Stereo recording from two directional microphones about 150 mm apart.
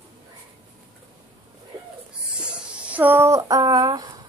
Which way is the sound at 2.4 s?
10° right (ahead or behind).